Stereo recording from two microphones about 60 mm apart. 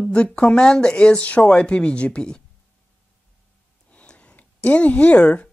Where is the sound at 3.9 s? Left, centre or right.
Centre.